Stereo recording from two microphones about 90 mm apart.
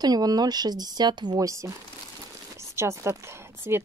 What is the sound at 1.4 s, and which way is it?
A woman's voice, 35° right (ahead or behind).